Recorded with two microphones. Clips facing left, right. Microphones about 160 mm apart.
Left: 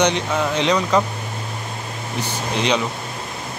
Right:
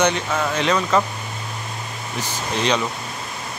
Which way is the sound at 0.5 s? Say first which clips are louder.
Left 1 dB; 15° left (ahead or behind).